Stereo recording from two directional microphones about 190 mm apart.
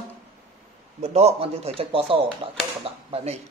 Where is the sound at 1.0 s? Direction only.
35° right (ahead or behind).